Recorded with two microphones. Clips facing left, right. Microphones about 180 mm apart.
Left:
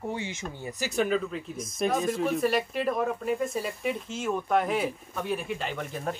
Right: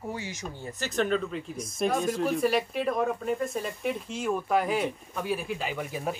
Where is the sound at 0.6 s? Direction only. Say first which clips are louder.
Even; 10° left (ahead or behind).